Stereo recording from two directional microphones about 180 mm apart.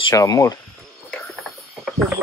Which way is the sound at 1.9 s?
Centre (ahead or behind).